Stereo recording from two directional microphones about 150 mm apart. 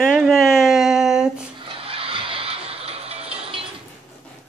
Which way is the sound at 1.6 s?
40° right (ahead or behind).